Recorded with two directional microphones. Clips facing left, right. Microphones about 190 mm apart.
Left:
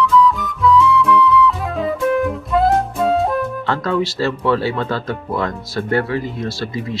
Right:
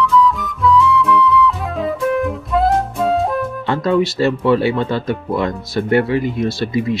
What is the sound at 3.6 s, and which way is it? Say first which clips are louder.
Speech: right 3 dB; 20° right (ahead or behind).